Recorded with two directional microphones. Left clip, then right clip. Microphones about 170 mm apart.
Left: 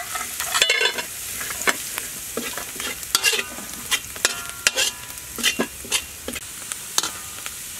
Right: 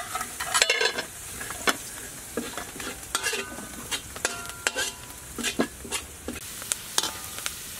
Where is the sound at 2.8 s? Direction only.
20° left (ahead or behind).